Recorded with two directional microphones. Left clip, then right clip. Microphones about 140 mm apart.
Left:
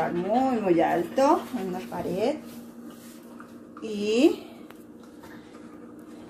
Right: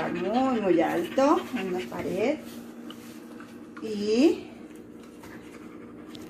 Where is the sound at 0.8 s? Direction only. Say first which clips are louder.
Left 2 dB; 10° left (ahead or behind).